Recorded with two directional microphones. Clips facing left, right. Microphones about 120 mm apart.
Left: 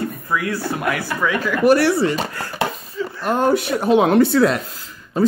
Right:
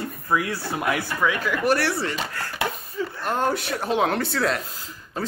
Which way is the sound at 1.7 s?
15° left (ahead or behind).